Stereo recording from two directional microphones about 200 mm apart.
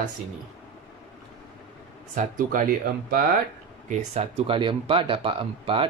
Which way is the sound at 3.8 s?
30° right (ahead or behind).